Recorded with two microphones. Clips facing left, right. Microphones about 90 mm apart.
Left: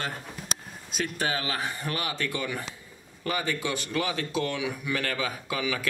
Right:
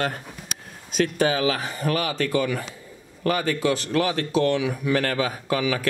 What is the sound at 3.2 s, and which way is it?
Speech, 55° right (ahead or behind).